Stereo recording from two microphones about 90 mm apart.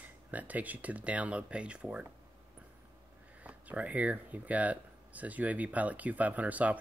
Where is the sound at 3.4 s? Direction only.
15° right (ahead or behind).